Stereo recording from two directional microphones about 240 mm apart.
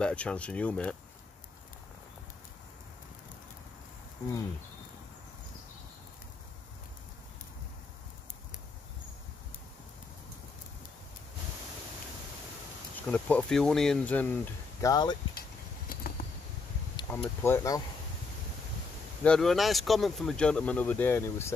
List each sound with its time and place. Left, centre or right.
0.0 s speech: centre
13.0 s speech: centre
15.9 s a sound: left
16.9 s speech: centre
19.2 s speech: centre